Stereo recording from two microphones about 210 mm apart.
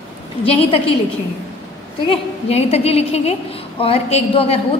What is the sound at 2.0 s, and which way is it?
A woman's voice, 30° left (ahead or behind).